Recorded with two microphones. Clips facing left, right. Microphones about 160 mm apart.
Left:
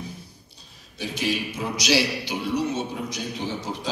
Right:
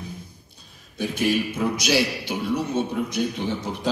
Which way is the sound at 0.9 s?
50° right (ahead or behind).